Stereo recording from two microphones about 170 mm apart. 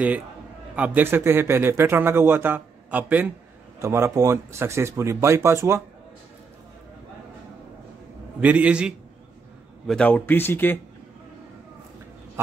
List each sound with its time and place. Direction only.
0.7 s a man's voice: 10° right (ahead or behind)
8.4 s a man's voice: 10° right (ahead or behind)
9.8 s speech: 5° left (ahead or behind)